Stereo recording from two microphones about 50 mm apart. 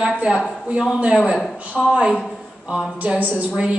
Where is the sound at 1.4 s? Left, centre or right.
Centre.